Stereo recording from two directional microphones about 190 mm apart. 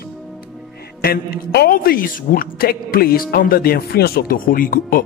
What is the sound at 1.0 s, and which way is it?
A man's voice, 55° left (ahead or behind).